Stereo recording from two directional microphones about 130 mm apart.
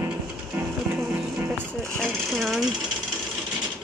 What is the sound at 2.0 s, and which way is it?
Speech, 5° left (ahead or behind).